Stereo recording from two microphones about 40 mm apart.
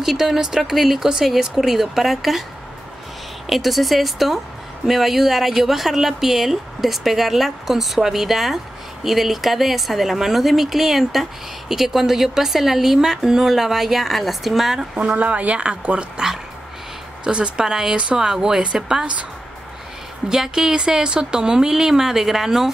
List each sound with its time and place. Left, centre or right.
0.0 s speech: centre
3.4 s speech: centre
15.1 s speech: right
17.2 s speech: right
20.2 s speech: centre